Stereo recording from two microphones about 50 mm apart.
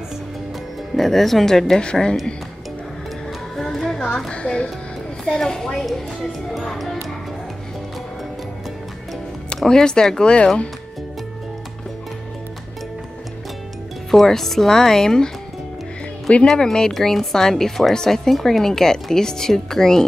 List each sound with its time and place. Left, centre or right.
0.9 s a woman's voice: centre
3.5 s music: centre
4.3 s speech: left
5.3 s a woman's voice: centre
9.7 s a woman's voice: centre
14.1 s a woman's voice: centre